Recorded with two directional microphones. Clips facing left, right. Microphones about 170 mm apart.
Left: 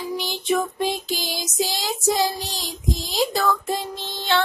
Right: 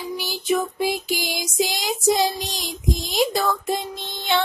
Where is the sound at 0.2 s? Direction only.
10° right (ahead or behind).